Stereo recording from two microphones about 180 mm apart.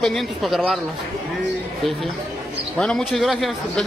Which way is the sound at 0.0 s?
Centre (ahead or behind).